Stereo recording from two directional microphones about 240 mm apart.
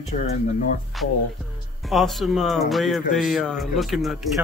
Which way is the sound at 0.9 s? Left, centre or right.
Centre.